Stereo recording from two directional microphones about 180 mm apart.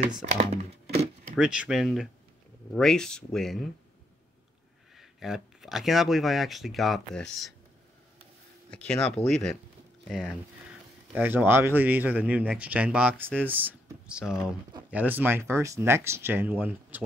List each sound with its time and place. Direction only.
0.2 s speech: 40° right (ahead or behind)
1.3 s speech: 5° right (ahead or behind)
4.9 s speech: centre (ahead or behind)
8.6 s speech: 5° left (ahead or behind)
11.1 s speech: 10° right (ahead or behind)